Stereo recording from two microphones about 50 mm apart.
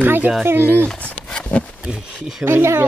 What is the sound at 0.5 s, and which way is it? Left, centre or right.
Speech, right.